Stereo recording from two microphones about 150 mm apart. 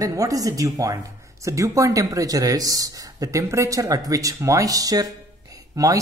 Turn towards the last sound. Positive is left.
turn(degrees=-25)  # may be behind; listen again after turning